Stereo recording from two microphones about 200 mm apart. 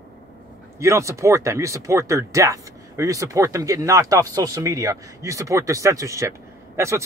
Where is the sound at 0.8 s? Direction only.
15° right (ahead or behind).